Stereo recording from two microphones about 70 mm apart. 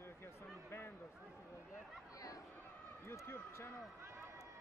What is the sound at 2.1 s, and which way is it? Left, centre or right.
Chatter, left.